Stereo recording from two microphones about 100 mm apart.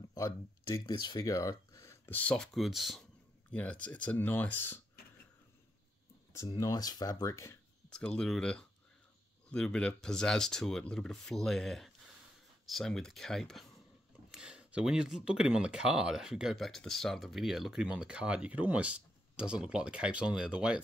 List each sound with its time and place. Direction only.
0.1 s speech: 35° left (ahead or behind)
0.9 s speech: 45° left (ahead or behind)
1.2 s a sound: 35° left (ahead or behind)
2.0 s speech: 20° left (ahead or behind)
2.3 s speech: 5° left (ahead or behind)
3.5 s speech: 10° left (ahead or behind)
6.5 s speech: 40° left (ahead or behind)
7.9 s speech: 10° left (ahead or behind)
14.3 s speech: 10° right (ahead or behind)